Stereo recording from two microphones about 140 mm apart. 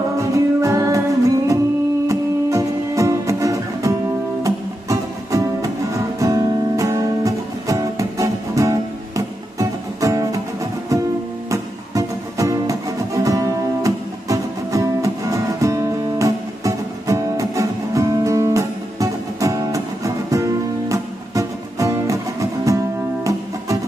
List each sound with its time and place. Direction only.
0.2 s music: 25° right (ahead or behind)